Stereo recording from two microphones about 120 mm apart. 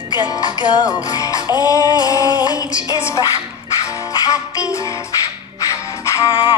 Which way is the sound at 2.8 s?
25° left (ahead or behind).